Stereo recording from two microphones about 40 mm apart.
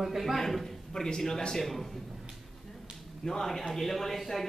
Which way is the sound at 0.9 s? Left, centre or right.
Centre.